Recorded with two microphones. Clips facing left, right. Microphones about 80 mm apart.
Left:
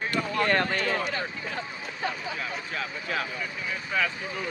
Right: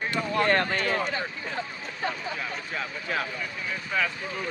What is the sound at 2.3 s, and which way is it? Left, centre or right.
Speech, centre.